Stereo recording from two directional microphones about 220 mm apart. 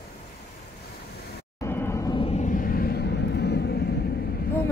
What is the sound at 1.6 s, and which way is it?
Vehicle, 10° left (ahead or behind).